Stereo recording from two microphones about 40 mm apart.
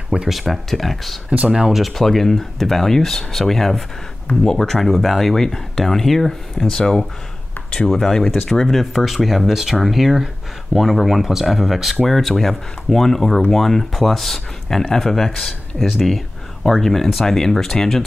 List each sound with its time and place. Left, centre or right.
0.3 s speech: centre
12.1 s speech: centre